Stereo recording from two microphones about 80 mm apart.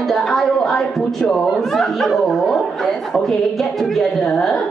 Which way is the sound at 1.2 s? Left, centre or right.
Centre.